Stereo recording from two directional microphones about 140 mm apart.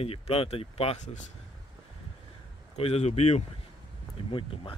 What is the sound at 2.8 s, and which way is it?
Speech, 50° left (ahead or behind).